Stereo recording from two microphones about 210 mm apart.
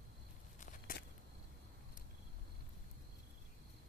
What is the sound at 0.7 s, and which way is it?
Walk, 45° left (ahead or behind).